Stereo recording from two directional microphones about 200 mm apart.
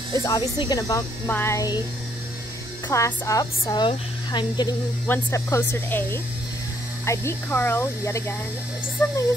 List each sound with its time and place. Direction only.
0.1 s a woman's voice: 15° left (ahead or behind)
2.9 s a woman's voice: 15° left (ahead or behind)